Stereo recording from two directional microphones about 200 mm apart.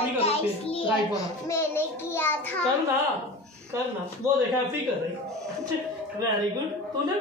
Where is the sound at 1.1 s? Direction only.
15° left (ahead or behind).